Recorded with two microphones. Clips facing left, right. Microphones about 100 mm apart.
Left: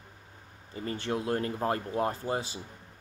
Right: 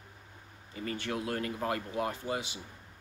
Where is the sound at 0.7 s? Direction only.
30° left (ahead or behind).